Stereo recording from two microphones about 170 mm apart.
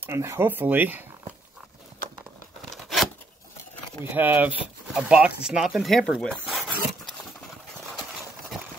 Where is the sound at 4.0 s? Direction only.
10° right (ahead or behind).